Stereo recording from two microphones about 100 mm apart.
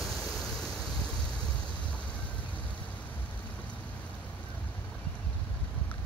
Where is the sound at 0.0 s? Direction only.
Centre (ahead or behind).